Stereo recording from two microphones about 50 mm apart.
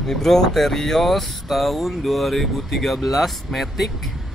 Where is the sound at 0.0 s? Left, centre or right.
Centre.